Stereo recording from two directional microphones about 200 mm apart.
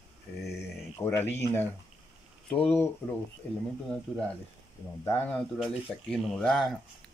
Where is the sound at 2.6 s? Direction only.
10° left (ahead or behind).